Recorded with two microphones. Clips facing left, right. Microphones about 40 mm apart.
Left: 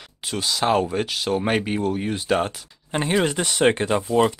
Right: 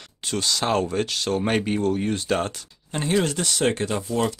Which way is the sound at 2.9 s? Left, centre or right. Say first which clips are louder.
Left 2 dB; centre.